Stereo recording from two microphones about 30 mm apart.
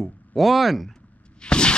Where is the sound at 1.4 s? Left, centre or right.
Left.